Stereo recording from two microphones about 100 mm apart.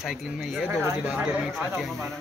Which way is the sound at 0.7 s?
30° right (ahead or behind).